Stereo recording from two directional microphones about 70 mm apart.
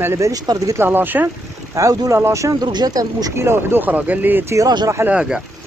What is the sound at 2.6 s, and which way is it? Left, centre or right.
Speech, right.